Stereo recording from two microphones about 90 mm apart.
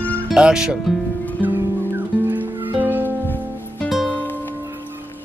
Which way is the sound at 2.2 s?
20° right (ahead or behind).